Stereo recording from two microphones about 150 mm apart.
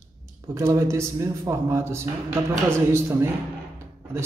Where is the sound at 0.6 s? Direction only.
20° right (ahead or behind).